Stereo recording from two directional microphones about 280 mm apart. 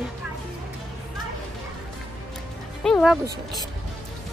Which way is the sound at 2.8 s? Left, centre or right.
Centre.